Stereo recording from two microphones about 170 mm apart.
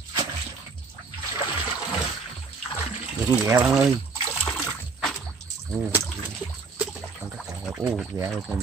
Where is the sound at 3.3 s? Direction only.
15° right (ahead or behind).